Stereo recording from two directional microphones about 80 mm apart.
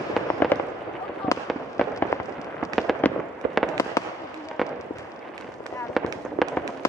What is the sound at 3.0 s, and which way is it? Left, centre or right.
Fireworks, centre.